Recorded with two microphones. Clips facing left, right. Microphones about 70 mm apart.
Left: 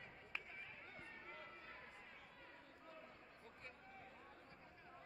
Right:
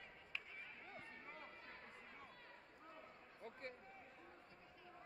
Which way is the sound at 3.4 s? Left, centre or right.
Right.